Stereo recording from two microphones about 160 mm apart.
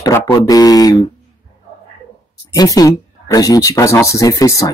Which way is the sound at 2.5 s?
25° left (ahead or behind).